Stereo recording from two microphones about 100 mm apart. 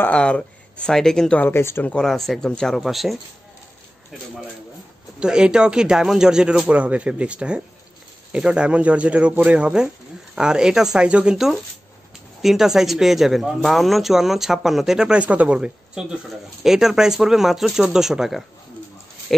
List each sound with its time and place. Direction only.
0.0 s speech: 10° left (ahead or behind)
1.4 s speech: 25° left (ahead or behind)
1.9 s speech: 5° left (ahead or behind)
5.2 s speech: 10° right (ahead or behind)